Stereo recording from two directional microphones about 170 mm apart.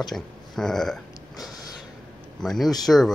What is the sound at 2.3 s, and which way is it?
Speech, centre (ahead or behind).